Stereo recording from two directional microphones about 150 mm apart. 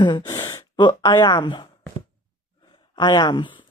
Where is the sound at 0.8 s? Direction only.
30° left (ahead or behind).